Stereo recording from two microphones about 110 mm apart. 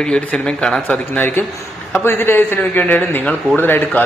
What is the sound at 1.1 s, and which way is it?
A man's voice, 20° left (ahead or behind).